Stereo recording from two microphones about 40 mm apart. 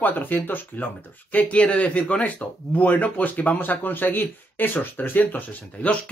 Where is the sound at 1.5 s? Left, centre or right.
Left.